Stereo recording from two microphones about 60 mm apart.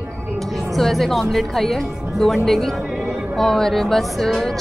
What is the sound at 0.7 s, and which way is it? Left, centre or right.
A woman's voice, centre.